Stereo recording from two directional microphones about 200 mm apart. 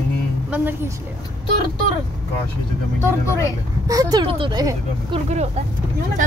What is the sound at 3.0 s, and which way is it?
Speech, 15° left (ahead or behind).